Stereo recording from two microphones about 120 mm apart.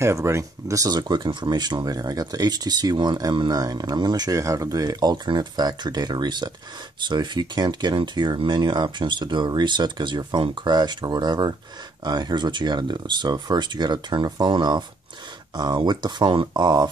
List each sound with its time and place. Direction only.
0.0 s speech: 25° right (ahead or behind)